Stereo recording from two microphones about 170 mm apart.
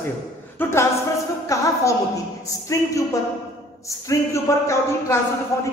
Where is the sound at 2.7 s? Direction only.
20° left (ahead or behind).